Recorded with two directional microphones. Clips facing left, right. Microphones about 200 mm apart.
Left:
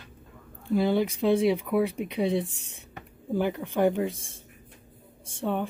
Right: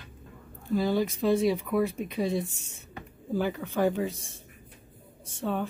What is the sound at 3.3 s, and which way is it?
Speech, 20° left (ahead or behind).